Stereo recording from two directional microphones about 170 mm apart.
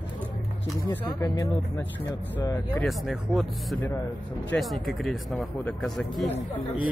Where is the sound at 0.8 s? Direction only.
20° left (ahead or behind).